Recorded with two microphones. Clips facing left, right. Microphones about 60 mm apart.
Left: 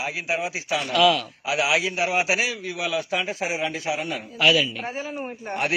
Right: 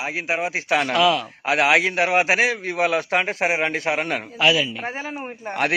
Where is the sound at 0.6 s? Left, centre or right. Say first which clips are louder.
Right 6 dB; right.